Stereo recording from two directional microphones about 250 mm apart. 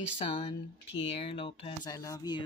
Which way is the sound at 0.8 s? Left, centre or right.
Left.